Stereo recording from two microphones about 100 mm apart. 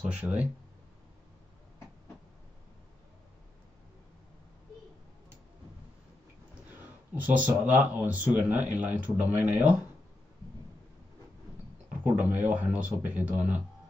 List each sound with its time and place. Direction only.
0.0 s speech: 15° right (ahead or behind)
6.8 s speech: 15° right (ahead or behind)
12.0 s speech: 15° right (ahead or behind)